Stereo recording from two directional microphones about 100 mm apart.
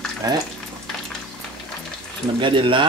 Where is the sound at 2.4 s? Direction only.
55° right (ahead or behind).